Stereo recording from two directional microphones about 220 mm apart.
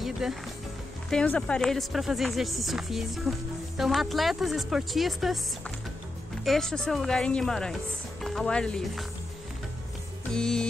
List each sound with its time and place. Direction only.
0.0 s music: centre (ahead or behind)
1.1 s speech: 5° left (ahead or behind)
6.4 s speech: centre (ahead or behind)
10.3 s speech: 5° left (ahead or behind)